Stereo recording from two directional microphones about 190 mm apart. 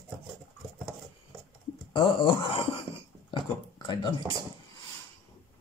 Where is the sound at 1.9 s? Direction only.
25° left (ahead or behind).